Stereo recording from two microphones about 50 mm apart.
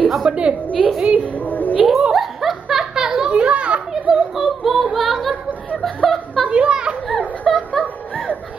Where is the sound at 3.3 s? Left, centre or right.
Right.